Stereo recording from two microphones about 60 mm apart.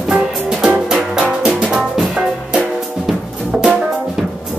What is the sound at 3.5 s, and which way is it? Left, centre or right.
Music, centre.